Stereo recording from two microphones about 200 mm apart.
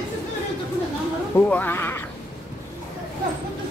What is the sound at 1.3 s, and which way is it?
Speech, 10° left (ahead or behind).